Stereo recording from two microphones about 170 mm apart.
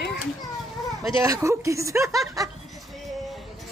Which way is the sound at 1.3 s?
20° right (ahead or behind).